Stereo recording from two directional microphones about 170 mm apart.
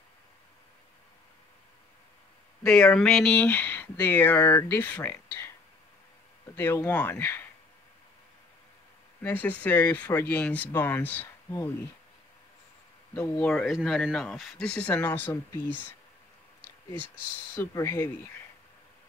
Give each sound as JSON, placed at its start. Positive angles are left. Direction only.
{"t": 2.6, "sound": "speech", "side_deg": 5}
{"t": 6.5, "sound": "speech", "side_deg": 15}
{"t": 9.2, "sound": "speech", "side_deg": 10}
{"t": 13.1, "sound": "speech", "side_deg": 10}
{"t": 17.6, "sound": "speech", "side_deg": 15}